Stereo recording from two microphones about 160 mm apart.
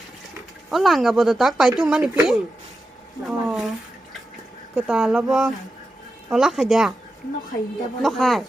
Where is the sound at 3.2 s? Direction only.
Centre (ahead or behind).